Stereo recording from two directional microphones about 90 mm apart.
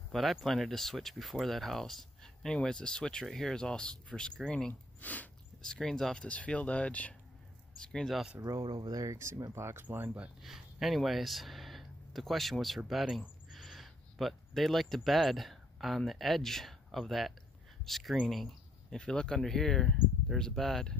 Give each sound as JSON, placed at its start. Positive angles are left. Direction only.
{"t": 0.1, "sound": "speech", "side_deg": 0}
{"t": 4.1, "sound": "speech", "side_deg": -5}
{"t": 4.5, "sound": "a man's voice", "side_deg": 10}
{"t": 8.4, "sound": "speech", "side_deg": -40}
{"t": 10.4, "sound": "speech", "side_deg": -5}